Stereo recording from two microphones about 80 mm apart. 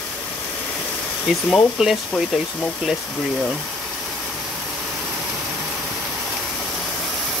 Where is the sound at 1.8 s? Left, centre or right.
Centre.